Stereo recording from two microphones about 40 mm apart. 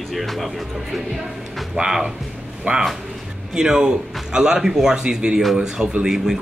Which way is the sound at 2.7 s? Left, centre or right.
Right.